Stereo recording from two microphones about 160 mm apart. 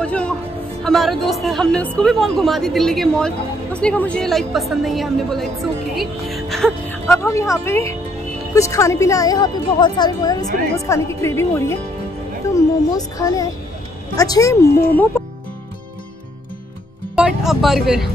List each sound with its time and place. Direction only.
0.0 s a woman's voice: 10° left (ahead or behind)
7.1 s a woman's voice: 20° left (ahead or behind)
12.4 s music: 20° left (ahead or behind)
12.9 s a woman's voice: 20° left (ahead or behind)
17.1 s speech: 5° right (ahead or behind)